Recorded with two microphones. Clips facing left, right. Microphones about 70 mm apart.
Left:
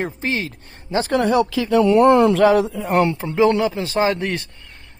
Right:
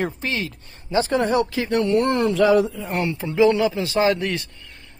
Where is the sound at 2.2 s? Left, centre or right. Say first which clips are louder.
Left 2 dB; left.